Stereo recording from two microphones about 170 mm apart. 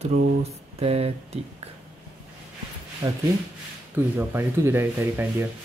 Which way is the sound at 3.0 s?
25° right (ahead or behind).